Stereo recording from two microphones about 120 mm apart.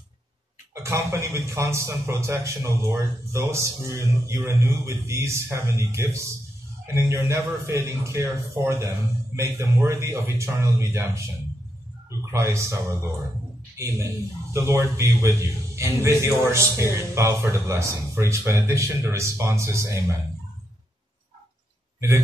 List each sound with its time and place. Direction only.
0.8 s a man's voice: 25° right (ahead or behind)
12.3 s a man's voice: 25° right (ahead or behind)